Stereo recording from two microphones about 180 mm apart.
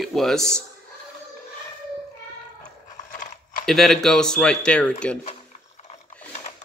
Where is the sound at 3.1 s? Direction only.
45° left (ahead or behind).